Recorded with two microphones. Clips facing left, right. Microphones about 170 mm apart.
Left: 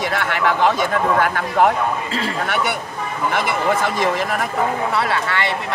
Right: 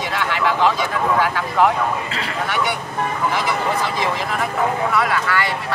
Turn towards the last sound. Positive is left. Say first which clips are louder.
# even
turn(degrees=25)  # may be behind; listen again after turning